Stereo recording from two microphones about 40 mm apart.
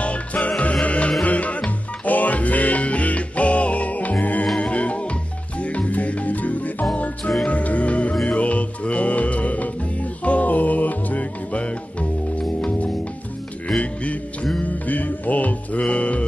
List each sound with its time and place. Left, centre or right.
0.0 s music: left
14.6 s music: left